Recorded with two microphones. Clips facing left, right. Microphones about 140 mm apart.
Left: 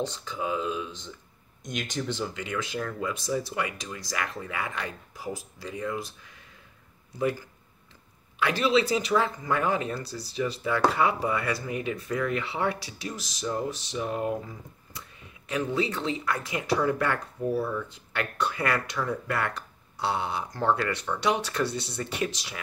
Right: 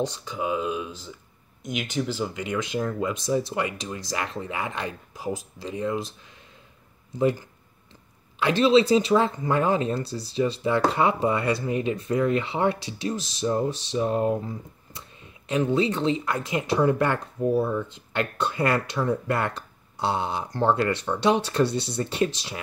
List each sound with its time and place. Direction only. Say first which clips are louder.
0.0 s speech: right 3 dB; 15° right (ahead or behind)
1.6 s speech: right 4 dB; 5° right (ahead or behind)
2.2 s speech: right 4 dB; 20° right (ahead or behind)
7.2 s speech: right 5 dB; 25° right (ahead or behind)